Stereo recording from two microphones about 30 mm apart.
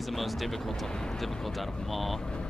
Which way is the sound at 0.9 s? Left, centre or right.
Left.